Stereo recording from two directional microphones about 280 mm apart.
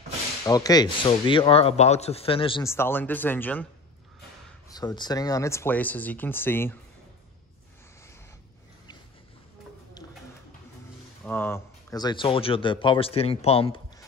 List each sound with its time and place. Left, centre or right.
0.5 s speech: centre
4.6 s speech: centre
11.2 s speech: centre